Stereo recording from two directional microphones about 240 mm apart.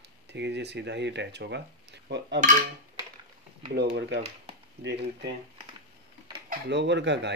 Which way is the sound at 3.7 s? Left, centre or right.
Right.